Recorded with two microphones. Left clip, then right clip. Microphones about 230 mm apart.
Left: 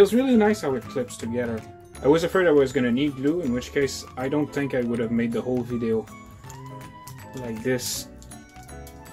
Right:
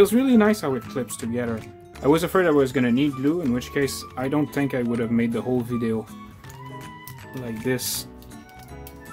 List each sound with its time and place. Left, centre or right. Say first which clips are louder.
0.0 s speech: even; centre
7.4 s speech: even; centre